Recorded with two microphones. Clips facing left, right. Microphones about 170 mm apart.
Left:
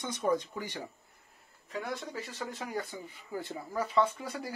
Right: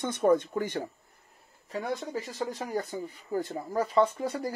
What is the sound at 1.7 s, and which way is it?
Speech, 35° right (ahead or behind).